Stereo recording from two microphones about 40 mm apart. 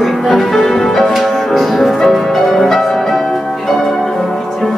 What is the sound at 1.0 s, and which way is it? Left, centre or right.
Music, centre.